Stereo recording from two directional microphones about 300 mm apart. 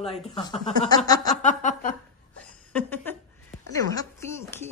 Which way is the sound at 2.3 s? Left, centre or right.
Centre.